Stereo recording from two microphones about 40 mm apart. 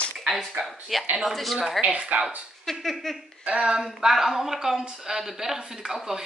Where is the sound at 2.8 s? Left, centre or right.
Centre.